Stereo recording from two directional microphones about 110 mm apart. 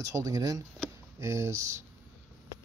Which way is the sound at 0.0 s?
35° right (ahead or behind).